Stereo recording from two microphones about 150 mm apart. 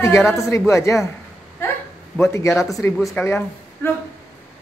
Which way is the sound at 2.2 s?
20° left (ahead or behind).